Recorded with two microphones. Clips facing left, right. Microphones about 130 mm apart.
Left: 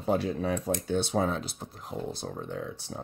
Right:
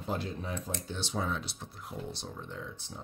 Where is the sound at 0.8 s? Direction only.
55° left (ahead or behind).